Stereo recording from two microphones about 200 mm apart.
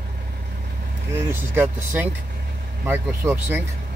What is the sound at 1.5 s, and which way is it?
Speech, 10° right (ahead or behind).